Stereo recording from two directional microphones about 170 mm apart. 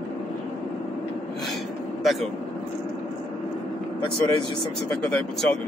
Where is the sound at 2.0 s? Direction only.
Centre (ahead or behind).